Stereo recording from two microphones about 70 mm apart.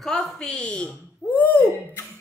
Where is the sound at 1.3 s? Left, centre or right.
Left.